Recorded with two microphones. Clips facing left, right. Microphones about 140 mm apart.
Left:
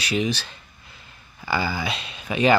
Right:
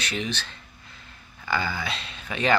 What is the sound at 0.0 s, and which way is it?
Speech, 10° left (ahead or behind).